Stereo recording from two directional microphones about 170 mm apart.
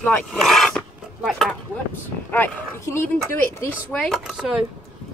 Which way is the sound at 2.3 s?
15° left (ahead or behind).